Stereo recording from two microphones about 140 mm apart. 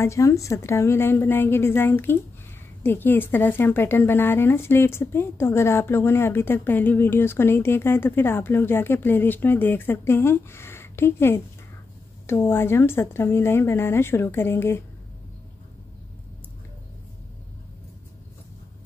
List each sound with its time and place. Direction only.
0.0 s a woman's voice: 20° left (ahead or behind)